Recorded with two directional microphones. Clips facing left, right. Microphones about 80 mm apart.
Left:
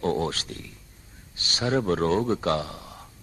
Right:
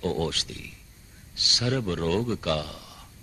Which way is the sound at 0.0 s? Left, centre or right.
Left.